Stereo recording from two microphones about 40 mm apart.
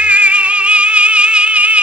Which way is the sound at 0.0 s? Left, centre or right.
Right.